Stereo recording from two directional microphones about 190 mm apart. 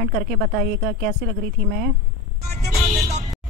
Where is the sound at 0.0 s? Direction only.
45° right (ahead or behind).